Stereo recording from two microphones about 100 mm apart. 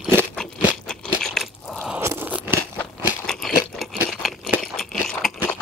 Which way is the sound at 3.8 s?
Centre (ahead or behind).